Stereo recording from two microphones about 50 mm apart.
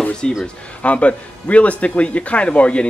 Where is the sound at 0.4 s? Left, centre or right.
Left.